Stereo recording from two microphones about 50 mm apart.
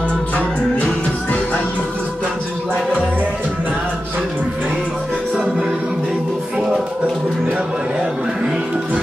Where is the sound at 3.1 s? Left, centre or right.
Right.